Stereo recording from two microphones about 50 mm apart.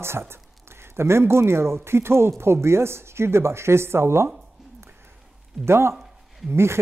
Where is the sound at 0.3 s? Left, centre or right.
Right.